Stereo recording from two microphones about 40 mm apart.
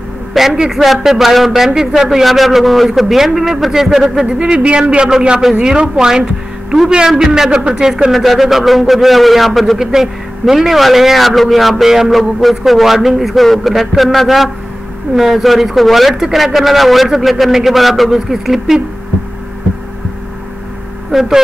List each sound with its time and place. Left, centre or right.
0.3 s a man's voice: centre
4.3 s a man's voice: right; by 8.1 s centre
8.1 s a man's voice: centre
9.8 s a man's voice: centre
21.1 s speech: centre